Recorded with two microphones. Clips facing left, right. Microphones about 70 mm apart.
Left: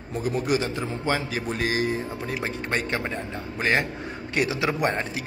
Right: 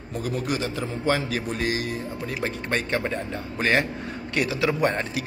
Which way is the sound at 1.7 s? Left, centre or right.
Left.